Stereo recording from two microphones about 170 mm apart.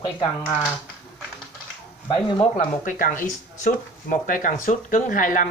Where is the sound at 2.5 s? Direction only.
50° left (ahead or behind).